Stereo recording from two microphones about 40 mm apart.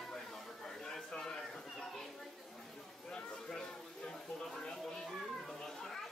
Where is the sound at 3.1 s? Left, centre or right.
Left.